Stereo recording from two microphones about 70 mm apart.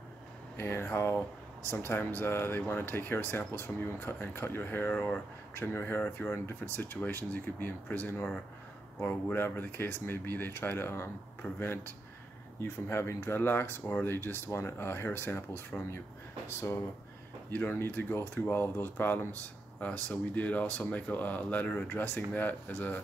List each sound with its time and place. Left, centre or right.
0.6 s speech: left